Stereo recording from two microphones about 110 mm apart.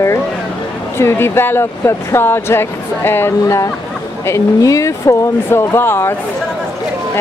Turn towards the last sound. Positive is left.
turn(degrees=20)  # may be behind; listen again after turning